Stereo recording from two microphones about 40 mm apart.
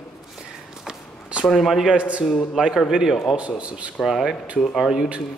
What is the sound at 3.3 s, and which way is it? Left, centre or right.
Speech, right.